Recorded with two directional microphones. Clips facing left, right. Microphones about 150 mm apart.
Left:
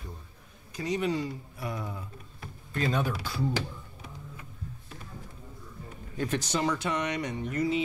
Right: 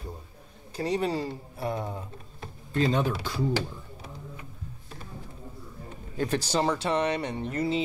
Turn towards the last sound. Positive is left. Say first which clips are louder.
# right 1 dB
turn(degrees=-30)  # may be behind; listen again after turning